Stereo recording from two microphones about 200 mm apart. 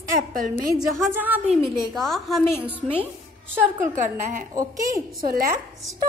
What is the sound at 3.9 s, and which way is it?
Speech, 40° right (ahead or behind).